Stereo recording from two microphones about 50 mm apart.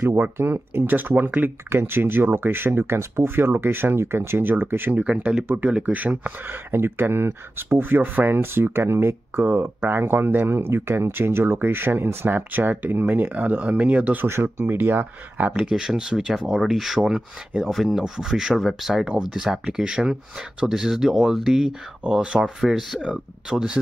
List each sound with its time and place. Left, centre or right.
0.2 s speech: right
1.7 s speech: right
5.6 s speech: right
14.2 s speech: right
15.6 s speech: centre
22.4 s speech: centre